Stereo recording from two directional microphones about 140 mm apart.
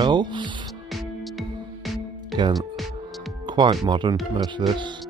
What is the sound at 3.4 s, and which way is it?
Music, 35° right (ahead or behind).